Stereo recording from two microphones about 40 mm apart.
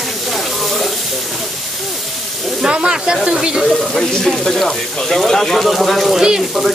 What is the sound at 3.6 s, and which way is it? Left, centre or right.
Speech, centre.